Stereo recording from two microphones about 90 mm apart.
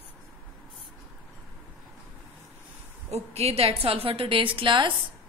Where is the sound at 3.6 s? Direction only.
90° right; by 4.9 s 65° right (ahead or behind).